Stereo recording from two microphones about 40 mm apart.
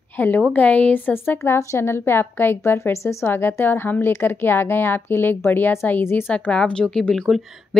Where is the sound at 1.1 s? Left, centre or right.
Left.